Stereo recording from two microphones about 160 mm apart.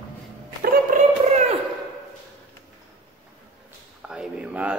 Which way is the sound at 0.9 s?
45° right (ahead or behind).